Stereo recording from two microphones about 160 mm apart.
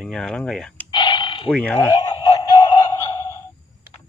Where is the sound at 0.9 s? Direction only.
30° left (ahead or behind).